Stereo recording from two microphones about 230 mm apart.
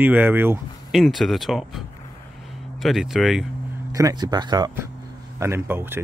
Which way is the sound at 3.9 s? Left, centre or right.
Centre.